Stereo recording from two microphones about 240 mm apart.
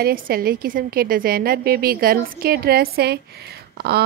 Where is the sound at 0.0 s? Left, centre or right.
Right.